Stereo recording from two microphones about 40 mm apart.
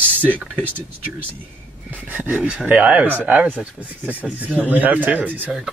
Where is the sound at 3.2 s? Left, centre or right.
Right.